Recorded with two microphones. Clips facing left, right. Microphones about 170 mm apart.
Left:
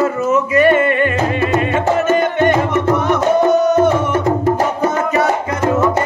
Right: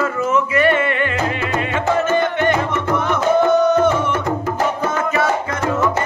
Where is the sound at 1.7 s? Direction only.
20° left (ahead or behind).